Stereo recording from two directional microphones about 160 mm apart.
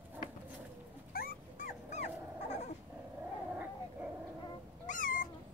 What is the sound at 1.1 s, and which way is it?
Dog, 70° left (ahead or behind).